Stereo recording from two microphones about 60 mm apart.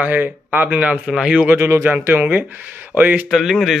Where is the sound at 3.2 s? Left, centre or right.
Centre.